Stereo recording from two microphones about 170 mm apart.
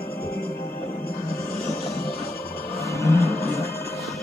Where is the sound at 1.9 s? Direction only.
65° left (ahead or behind).